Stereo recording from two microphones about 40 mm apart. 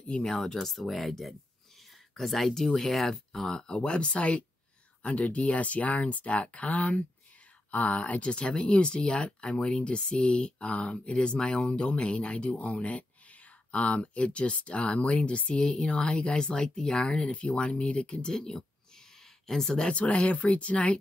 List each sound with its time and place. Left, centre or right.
0.0 s speech: left
0.3 s speech: centre
17.3 s speech: left
18.3 s speech: centre
19.8 s speech: left